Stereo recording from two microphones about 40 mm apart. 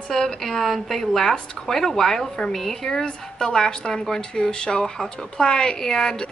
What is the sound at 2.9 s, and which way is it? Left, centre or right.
A woman's voice, left.